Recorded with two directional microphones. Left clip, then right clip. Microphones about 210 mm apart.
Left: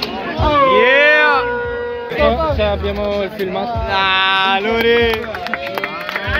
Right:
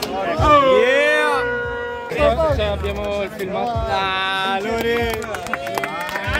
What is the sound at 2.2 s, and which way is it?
Music, 60° right (ahead or behind).